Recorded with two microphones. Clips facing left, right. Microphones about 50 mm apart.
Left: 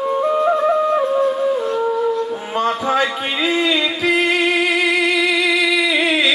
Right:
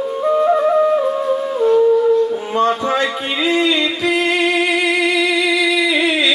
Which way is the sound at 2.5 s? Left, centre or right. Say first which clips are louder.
Left 2 dB; centre.